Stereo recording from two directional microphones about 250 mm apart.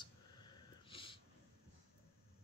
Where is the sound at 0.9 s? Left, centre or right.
Left.